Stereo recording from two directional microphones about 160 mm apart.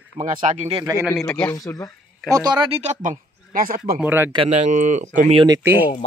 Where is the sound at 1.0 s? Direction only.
5° left (ahead or behind).